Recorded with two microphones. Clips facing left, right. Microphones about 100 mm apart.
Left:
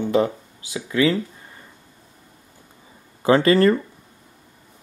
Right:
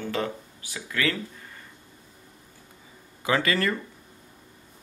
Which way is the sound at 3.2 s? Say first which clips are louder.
Left 10 dB; 35° left (ahead or behind).